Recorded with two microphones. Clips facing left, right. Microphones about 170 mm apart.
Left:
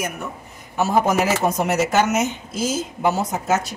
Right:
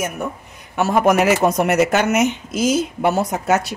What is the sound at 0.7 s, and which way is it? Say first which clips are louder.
Speech: right 3 dB; 70° right (ahead or behind).